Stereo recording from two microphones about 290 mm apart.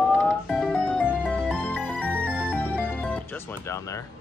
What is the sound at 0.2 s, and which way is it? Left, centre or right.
Music, centre.